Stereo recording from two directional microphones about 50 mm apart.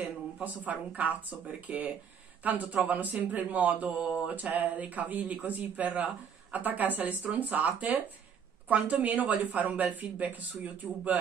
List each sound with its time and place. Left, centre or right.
0.0 s speech: right
1.7 s speech: right
2.4 s speech: right